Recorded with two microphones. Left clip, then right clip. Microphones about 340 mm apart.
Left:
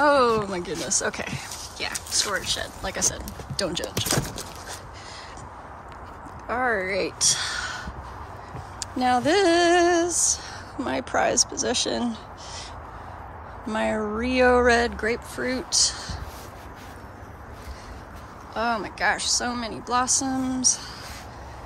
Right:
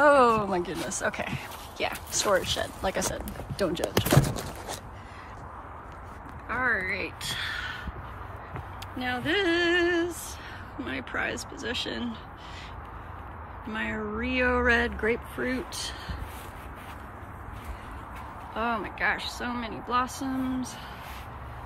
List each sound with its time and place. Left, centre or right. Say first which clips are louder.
0.0 s speech: even; centre
6.5 s speech: left 3 dB; centre
13.7 s a woman's voice: left 7 dB; centre
18.5 s a woman's voice: left 4 dB; centre